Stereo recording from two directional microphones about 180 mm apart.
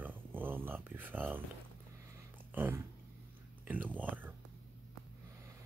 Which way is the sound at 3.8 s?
10° right (ahead or behind).